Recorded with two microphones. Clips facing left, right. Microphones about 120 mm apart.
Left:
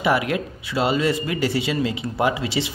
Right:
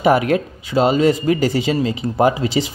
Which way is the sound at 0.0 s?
35° right (ahead or behind).